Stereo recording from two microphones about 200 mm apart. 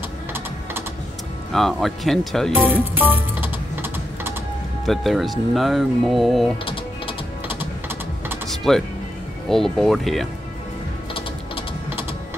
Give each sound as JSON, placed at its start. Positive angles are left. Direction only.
{"t": 1.5, "sound": "speech", "side_deg": 0}
{"t": 2.5, "sound": "music", "side_deg": -10}
{"t": 4.8, "sound": "speech", "side_deg": 0}
{"t": 6.6, "sound": "typing", "side_deg": 25}
{"t": 8.5, "sound": "music", "side_deg": 0}
{"t": 9.5, "sound": "speech", "side_deg": 0}